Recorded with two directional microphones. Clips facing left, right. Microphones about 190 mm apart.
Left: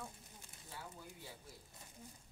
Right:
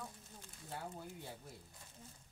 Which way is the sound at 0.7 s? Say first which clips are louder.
Right 6 dB; 55° right (ahead or behind).